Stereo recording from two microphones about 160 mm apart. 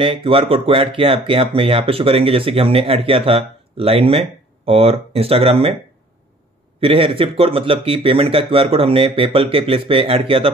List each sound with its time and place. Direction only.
0.0 s speech: 35° right (ahead or behind)
6.8 s speech: 35° right (ahead or behind)